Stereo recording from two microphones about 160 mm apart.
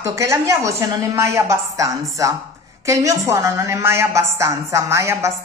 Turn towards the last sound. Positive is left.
turn(degrees=-20)  # may be behind; listen again after turning